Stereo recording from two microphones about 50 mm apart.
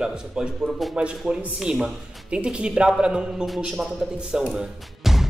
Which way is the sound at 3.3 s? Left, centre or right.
Centre.